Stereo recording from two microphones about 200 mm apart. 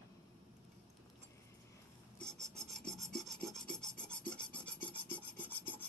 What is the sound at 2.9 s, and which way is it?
Filing, centre (ahead or behind).